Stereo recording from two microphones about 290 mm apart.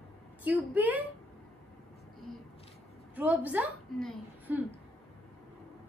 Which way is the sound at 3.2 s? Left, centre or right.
Centre.